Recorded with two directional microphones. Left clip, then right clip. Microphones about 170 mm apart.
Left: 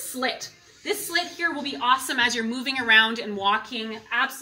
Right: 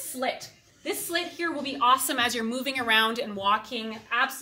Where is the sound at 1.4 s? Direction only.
50° right (ahead or behind).